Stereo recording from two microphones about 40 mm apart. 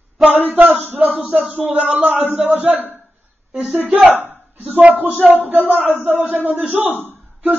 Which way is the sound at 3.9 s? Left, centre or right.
Right.